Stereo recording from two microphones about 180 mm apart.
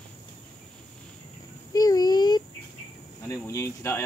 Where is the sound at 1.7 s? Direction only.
20° left (ahead or behind).